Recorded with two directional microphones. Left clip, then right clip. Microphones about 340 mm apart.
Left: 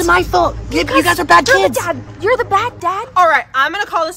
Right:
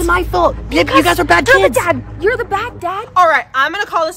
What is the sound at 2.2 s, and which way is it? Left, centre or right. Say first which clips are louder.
A woman's voice: left 2 dB; centre.